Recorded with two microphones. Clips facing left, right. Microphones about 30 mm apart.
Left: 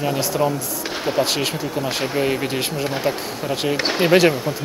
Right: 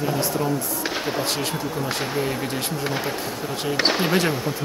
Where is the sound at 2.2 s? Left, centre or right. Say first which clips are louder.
Left 6 dB; left.